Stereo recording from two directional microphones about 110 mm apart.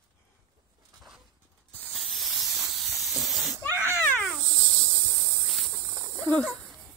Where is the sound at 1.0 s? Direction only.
5° right (ahead or behind).